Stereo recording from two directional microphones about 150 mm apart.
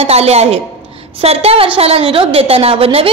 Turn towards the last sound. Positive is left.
turn(degrees=-40)  # may be behind; listen again after turning